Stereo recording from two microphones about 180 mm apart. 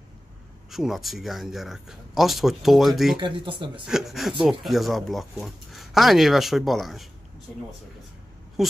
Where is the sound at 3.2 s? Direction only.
30° right (ahead or behind).